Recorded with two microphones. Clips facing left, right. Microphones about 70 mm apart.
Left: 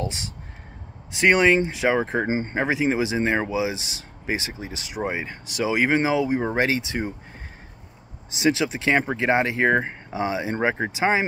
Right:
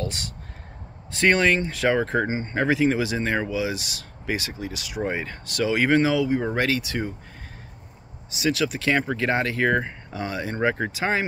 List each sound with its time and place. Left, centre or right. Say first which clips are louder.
0.0 s speech: left 1 dB; left
8.4 s speech: left 2 dB; left